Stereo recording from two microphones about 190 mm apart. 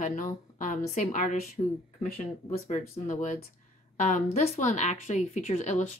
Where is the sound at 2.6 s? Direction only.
40° left (ahead or behind).